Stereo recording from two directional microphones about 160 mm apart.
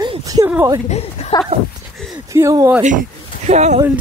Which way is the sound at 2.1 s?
20° right (ahead or behind).